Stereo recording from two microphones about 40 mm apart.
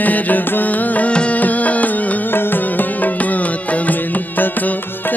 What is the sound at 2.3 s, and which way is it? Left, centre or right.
Music, left.